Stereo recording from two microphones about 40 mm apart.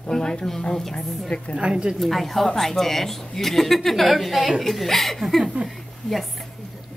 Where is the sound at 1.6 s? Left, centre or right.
Right.